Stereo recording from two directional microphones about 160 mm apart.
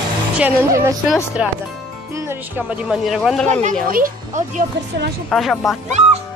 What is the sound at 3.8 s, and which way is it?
Speech, 60° right (ahead or behind).